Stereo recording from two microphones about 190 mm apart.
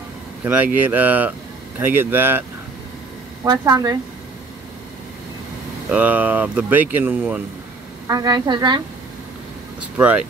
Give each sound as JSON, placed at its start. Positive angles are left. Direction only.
{"t": 0.4, "sound": "speech", "side_deg": -10}
{"t": 3.4, "sound": "a woman's voice", "side_deg": -20}
{"t": 5.9, "sound": "speech", "side_deg": -10}
{"t": 8.1, "sound": "a woman's voice", "side_deg": -20}
{"t": 9.9, "sound": "speech", "side_deg": -5}